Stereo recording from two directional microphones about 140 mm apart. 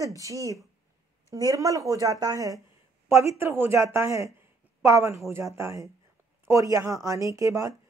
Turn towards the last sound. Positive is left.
turn(degrees=-20)  # may be behind; listen again after turning